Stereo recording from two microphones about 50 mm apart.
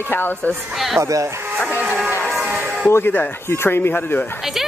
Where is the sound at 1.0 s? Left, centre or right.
Right.